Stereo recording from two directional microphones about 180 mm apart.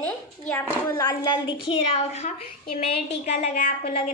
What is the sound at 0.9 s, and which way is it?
A woman's voice, 20° left (ahead or behind).